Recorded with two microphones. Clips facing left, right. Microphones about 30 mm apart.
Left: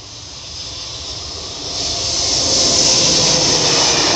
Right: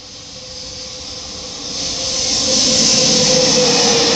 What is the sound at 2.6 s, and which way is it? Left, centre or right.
Train, right.